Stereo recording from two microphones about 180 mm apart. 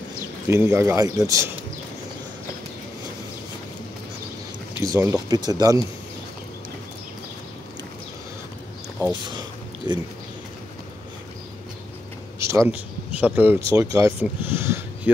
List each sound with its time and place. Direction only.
0.5 s speech: 15° right (ahead or behind)
4.8 s speech: 20° right (ahead or behind)
9.2 s a sound: 25° right (ahead or behind)
12.4 s speech: 15° right (ahead or behind)